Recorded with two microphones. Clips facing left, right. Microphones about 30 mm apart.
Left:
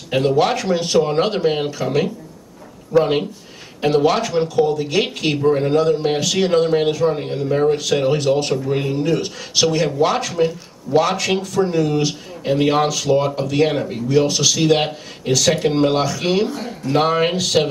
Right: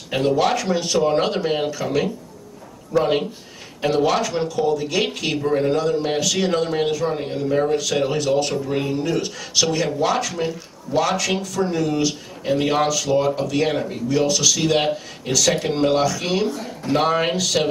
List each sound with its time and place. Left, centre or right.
0.1 s speech: centre